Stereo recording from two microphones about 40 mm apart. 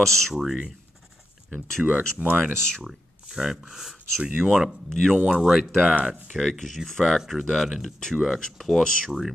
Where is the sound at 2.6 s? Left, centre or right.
Centre.